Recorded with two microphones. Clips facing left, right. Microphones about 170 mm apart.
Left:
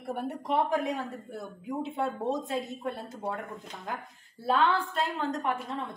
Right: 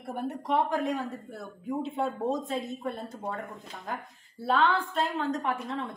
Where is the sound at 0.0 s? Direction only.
Centre (ahead or behind).